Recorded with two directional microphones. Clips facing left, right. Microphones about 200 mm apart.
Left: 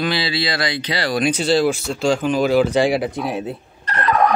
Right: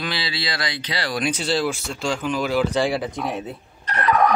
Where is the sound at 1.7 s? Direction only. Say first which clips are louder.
Left 7 dB; 35° left (ahead or behind).